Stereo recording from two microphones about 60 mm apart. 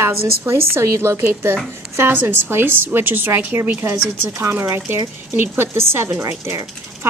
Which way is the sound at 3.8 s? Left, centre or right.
Right.